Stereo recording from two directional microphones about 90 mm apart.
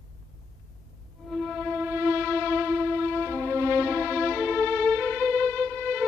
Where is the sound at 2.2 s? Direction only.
25° left (ahead or behind).